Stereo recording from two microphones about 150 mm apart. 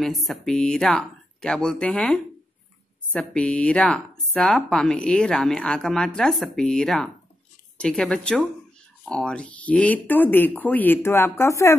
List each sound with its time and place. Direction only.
0.0 s speech: centre (ahead or behind); by 11.7 s 20° left (ahead or behind)